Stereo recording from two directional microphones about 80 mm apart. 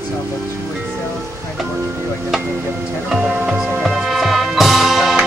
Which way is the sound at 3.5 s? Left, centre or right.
Centre.